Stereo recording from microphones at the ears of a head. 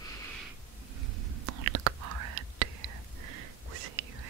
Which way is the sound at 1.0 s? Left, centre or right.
Right.